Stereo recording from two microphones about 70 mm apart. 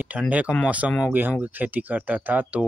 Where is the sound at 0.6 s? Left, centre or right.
Right.